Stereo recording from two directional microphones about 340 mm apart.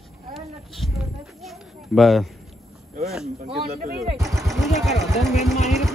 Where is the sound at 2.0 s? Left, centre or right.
Centre.